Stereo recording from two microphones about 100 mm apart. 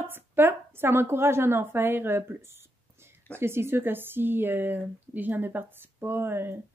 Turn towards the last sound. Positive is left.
turn(degrees=-20)  # may be behind; listen again after turning